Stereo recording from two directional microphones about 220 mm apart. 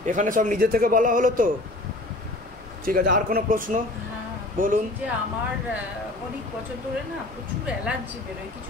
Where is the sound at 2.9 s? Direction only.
40° right (ahead or behind).